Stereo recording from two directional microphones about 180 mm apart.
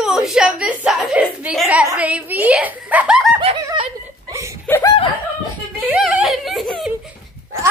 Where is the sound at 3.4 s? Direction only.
30° right (ahead or behind).